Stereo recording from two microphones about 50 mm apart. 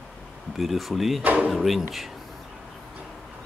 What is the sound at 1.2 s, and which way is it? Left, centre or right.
Speech, right.